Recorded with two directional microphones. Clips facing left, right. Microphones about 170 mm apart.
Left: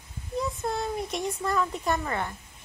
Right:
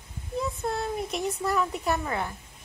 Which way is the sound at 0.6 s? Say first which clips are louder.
Even; centre (ahead or behind).